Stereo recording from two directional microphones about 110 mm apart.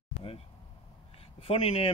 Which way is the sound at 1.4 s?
60° left (ahead or behind).